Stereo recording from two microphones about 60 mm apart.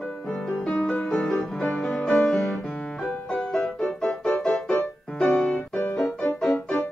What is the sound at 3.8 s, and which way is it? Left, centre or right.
Music, centre.